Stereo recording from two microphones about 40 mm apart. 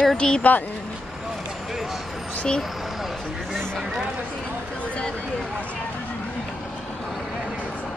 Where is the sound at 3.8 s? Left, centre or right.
Centre.